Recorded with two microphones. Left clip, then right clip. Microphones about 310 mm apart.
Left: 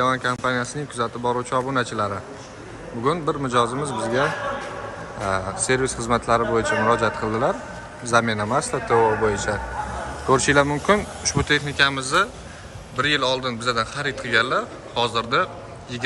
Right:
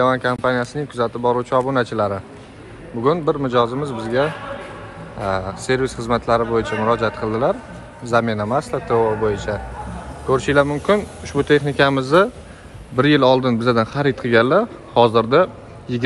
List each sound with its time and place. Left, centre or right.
0.0 s a man's voice: centre